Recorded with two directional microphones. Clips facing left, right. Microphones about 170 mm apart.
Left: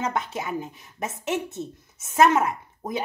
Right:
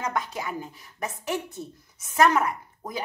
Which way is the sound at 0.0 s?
25° left (ahead or behind).